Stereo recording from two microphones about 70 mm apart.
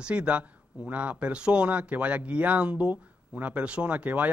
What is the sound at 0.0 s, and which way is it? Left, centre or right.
A man's voice, centre.